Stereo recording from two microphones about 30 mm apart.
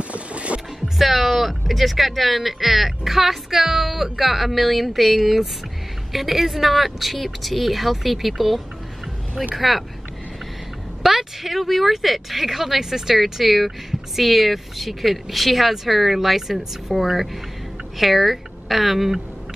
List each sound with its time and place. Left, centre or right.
0.1 s music: right
0.9 s speech: centre
11.0 s a sound: centre
11.6 s a woman's voice: centre